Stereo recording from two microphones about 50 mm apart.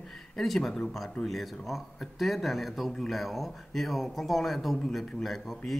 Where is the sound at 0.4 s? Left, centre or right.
Centre.